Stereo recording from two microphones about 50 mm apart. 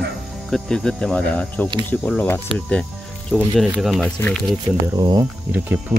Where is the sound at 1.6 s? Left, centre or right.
Left.